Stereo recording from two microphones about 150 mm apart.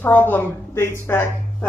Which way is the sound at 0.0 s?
15° left (ahead or behind).